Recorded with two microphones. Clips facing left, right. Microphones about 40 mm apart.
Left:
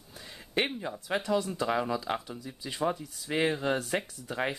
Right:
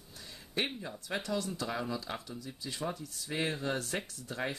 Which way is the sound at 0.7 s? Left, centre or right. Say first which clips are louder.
Left 6 dB; left.